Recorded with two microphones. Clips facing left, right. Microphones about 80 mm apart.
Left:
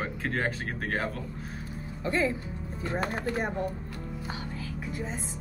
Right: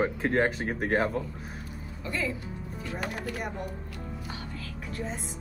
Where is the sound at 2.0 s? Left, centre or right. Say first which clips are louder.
Left 5 dB; left.